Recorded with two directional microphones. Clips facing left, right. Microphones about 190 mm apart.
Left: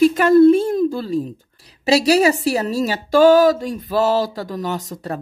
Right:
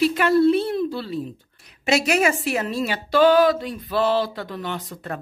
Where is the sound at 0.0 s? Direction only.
45° left (ahead or behind).